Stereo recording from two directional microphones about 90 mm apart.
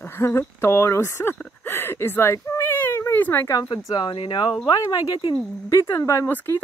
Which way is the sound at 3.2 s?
30° left (ahead or behind).